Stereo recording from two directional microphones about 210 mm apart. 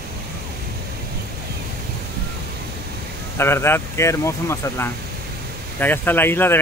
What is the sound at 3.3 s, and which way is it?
Speech, 10° left (ahead or behind).